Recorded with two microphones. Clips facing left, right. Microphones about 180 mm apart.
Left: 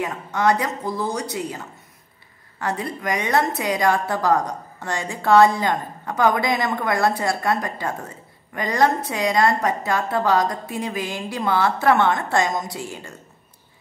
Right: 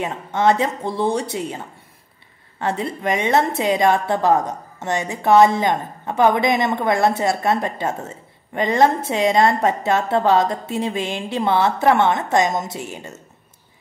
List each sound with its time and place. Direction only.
0.0 s a woman's voice: 25° right (ahead or behind)